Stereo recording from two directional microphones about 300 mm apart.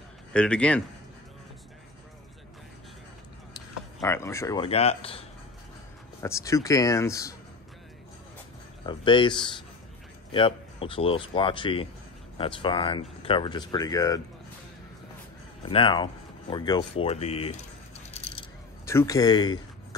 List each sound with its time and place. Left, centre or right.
0.3 s a man's voice: centre
4.0 s speech: centre
6.2 s speech: centre
8.8 s speech: centre
15.7 s speech: centre
18.9 s speech: centre